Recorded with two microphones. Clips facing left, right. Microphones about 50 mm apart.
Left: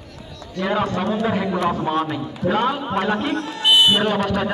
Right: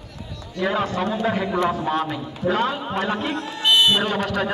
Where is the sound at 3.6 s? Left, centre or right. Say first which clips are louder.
Left 2 dB; centre.